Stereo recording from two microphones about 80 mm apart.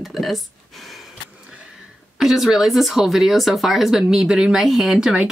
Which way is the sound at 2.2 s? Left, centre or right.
Centre.